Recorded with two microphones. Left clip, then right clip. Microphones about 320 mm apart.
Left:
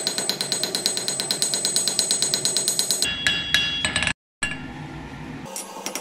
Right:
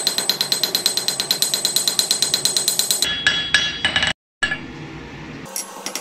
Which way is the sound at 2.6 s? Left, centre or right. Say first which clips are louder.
Right 4 dB; centre.